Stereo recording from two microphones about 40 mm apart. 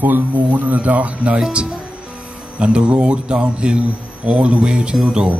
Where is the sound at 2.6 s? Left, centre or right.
Right.